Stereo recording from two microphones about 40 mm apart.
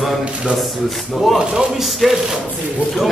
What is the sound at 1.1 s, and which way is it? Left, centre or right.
Speech, centre.